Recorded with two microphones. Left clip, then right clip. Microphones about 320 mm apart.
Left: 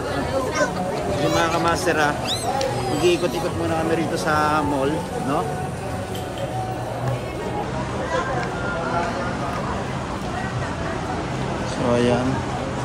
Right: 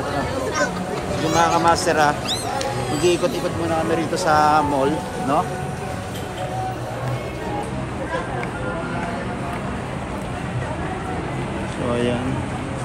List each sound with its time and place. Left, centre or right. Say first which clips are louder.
1.3 s speech: right 6 dB; centre